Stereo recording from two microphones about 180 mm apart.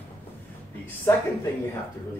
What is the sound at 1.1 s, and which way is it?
Speech, 15° left (ahead or behind).